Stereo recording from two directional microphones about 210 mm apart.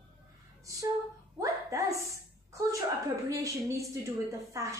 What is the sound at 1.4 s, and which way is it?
Speech, 15° right (ahead or behind).